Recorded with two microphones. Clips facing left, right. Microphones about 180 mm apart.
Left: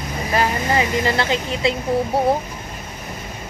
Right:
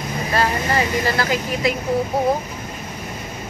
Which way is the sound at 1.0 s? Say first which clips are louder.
Even; 25° left (ahead or behind).